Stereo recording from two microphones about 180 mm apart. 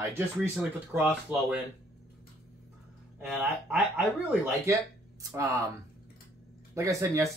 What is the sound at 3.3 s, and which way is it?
Speech, 10° right (ahead or behind).